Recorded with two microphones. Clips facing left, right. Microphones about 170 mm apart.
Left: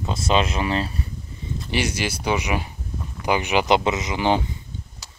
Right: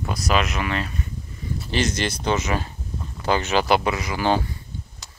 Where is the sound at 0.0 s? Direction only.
25° left (ahead or behind).